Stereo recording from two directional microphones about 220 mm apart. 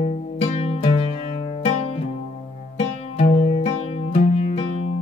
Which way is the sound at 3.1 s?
30° left (ahead or behind).